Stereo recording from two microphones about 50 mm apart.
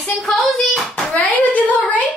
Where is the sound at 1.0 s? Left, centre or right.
Left.